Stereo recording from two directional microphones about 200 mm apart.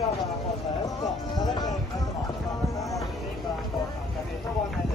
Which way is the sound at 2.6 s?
15° left (ahead or behind).